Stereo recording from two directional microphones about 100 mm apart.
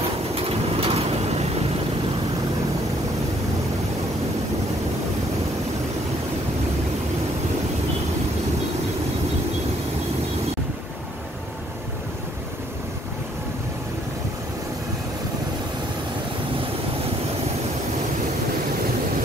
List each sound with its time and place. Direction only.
0.3 s vehicle: 75° right (ahead or behind)